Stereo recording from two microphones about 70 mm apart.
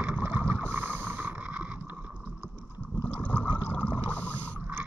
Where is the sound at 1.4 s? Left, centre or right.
Centre.